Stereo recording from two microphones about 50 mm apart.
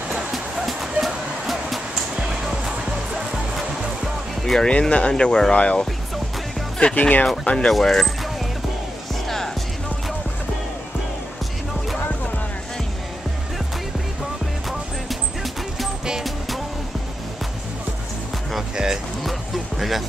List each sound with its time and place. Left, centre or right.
0.3 s vehicle: centre
2.1 s music: centre
4.6 s speech: left
7.0 s speech: left
7.4 s speech: centre
7.7 s a sound: centre
14.7 s a sound: centre
16.1 s music: centre
19.2 s music: centre